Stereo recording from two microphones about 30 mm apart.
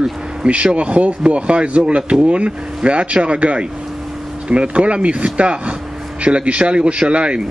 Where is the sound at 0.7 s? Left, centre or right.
Right.